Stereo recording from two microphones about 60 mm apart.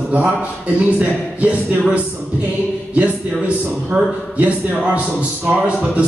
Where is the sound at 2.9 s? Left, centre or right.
Right.